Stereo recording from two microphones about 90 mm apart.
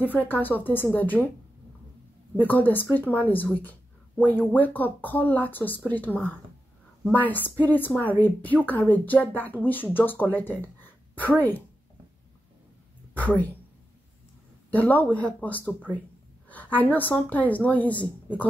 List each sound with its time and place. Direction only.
0.0 s speech: 20° left (ahead or behind)
2.3 s speech: 20° left (ahead or behind)
14.7 s speech: 20° left (ahead or behind)